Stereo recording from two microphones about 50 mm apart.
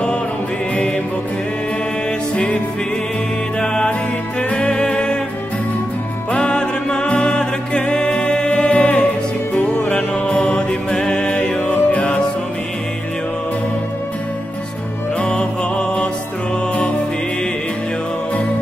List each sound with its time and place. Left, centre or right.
2.3 s music: left
6.3 s music: centre
15.1 s music: centre